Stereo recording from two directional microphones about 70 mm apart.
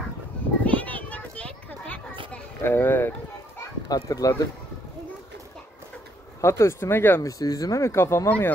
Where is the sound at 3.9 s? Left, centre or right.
Left.